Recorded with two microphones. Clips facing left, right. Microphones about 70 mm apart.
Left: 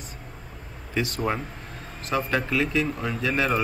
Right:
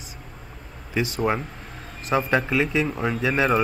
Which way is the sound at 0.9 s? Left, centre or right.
Centre.